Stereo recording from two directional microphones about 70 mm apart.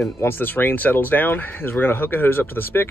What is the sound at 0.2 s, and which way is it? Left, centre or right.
Speech, left.